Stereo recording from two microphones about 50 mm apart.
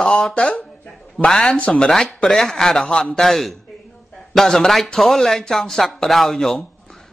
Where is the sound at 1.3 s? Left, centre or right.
Centre.